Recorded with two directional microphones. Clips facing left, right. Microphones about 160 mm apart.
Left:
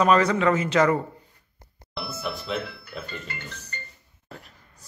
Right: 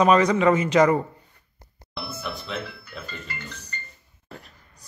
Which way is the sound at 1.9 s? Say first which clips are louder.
Left 1 dB; centre (ahead or behind).